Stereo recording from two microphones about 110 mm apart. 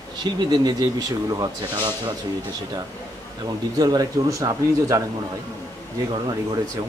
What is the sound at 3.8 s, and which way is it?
Speech, 35° right (ahead or behind).